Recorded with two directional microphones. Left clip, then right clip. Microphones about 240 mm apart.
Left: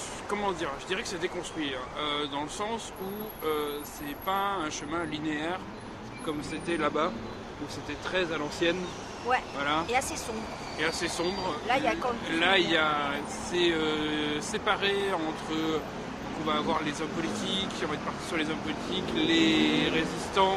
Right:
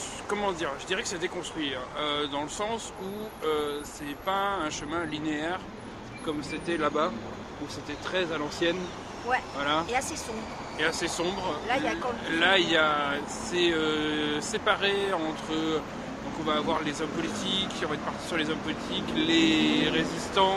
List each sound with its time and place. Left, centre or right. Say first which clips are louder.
0.3 s speech: right 1 dB; centre
8.1 s speech: even; centre
11.6 s speech: left 2 dB; centre
12.3 s speech: right 2 dB; centre